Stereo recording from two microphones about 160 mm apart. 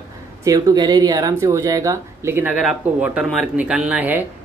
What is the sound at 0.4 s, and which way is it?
Speech, 20° right (ahead or behind).